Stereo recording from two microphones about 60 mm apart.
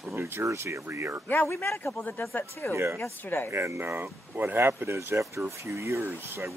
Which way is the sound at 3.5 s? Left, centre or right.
Right.